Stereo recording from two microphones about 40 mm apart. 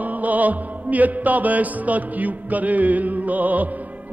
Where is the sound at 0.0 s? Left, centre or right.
Right.